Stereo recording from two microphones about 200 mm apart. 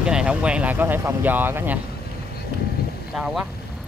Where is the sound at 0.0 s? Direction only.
5° right (ahead or behind).